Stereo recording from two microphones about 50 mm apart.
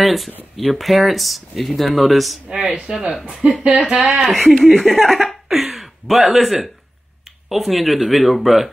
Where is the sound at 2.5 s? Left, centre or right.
Centre.